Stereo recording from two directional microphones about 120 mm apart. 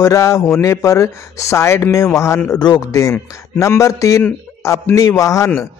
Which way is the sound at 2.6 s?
35° left (ahead or behind).